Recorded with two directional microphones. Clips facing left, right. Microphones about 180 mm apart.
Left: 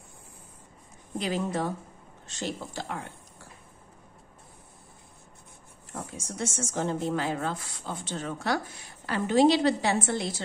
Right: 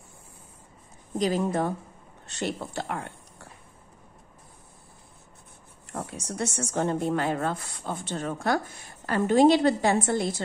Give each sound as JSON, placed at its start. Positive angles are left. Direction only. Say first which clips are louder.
{"t": 1.1, "sound": "a woman's voice", "louder": "right 4 dB", "side_deg": -40}
{"t": 2.2, "sound": "speech", "louder": "right 3 dB", "side_deg": -65}
{"t": 5.9, "sound": "a woman's voice", "louder": "right 4 dB", "side_deg": -65}